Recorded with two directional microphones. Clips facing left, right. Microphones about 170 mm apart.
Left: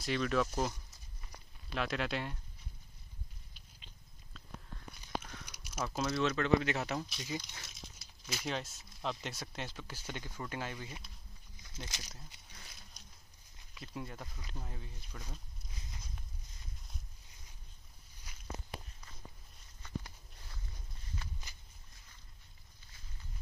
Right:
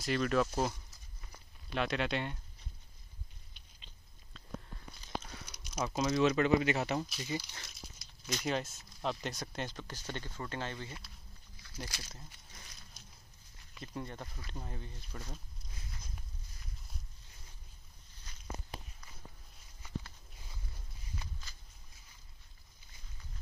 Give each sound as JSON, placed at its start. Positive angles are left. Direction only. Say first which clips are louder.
{"t": 0.0, "sound": "speech", "louder": "right 2 dB", "side_deg": 0}
{"t": 1.8, "sound": "speech", "louder": "right 2 dB", "side_deg": 0}
{"t": 3.5, "sound": "cat", "louder": "left 2 dB", "side_deg": 5}
{"t": 5.5, "sound": "a sound", "louder": "right 3 dB", "side_deg": 10}
{"t": 6.0, "sound": "speech", "louder": "right 5 dB", "side_deg": -15}
{"t": 11.6, "sound": "speech", "louder": "right 2 dB", "side_deg": 20}
{"t": 13.0, "sound": "a sound", "louder": "right 1 dB", "side_deg": -5}
{"t": 13.7, "sound": "speech", "louder": "right 2 dB", "side_deg": 5}
{"t": 18.3, "sound": "walk", "louder": "even", "side_deg": 10}